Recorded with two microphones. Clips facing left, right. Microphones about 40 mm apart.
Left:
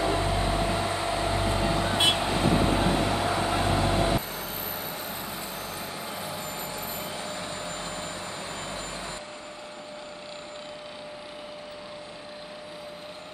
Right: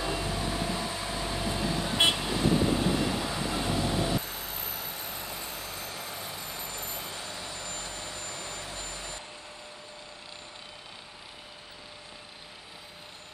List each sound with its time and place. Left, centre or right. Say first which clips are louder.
0.0 s vehicle: left 6 dB; left
7.3 s vehicle: left 5 dB; left